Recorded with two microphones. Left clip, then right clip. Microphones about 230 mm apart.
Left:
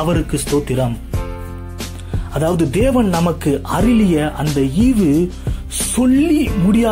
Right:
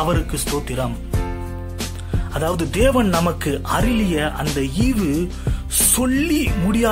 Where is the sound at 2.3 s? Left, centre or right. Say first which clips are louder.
Left 4 dB; centre.